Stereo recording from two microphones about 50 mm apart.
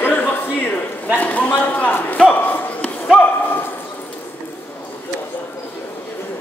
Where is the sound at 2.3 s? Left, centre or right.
Left.